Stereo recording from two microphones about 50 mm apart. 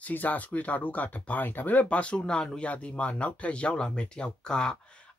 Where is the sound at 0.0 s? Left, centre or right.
Left.